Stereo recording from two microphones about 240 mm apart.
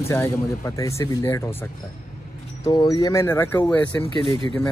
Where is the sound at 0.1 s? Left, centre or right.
Centre.